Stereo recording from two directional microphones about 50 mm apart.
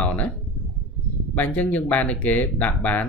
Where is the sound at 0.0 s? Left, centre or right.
Left.